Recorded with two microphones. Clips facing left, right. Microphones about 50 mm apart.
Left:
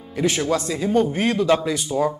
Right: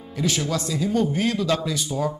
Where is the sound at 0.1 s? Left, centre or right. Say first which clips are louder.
Left 4 dB; left.